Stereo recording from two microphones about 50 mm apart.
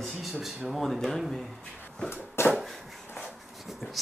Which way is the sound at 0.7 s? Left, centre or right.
Centre.